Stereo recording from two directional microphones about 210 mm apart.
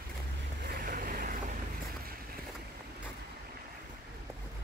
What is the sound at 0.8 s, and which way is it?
Boat, 40° right (ahead or behind).